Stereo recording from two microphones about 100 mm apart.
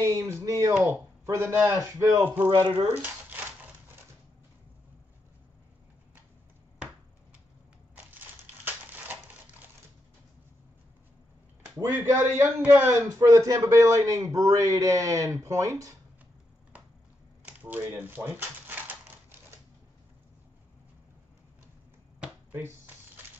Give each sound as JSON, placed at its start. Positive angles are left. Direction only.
{"t": 0.0, "sound": "speech", "side_deg": -30}
{"t": 7.9, "sound": "crushing", "side_deg": -15}
{"t": 8.9, "sound": "a sound", "side_deg": -15}
{"t": 11.8, "sound": "a man's voice", "side_deg": -30}
{"t": 17.5, "sound": "speech", "side_deg": -20}
{"t": 22.2, "sound": "finger snapping", "side_deg": -20}